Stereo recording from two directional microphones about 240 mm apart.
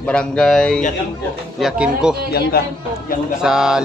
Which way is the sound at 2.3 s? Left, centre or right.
Left.